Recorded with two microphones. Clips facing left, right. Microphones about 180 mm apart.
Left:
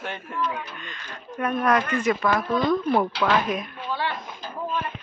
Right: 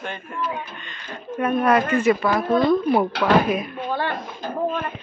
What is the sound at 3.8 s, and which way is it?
Speech, 50° right (ahead or behind).